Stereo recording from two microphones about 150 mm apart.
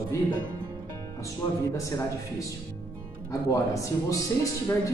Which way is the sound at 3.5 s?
20° left (ahead or behind).